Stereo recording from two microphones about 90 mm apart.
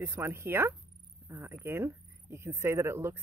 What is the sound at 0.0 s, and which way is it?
Speech, 30° right (ahead or behind).